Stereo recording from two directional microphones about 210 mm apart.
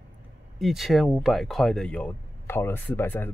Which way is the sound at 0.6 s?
Centre (ahead or behind).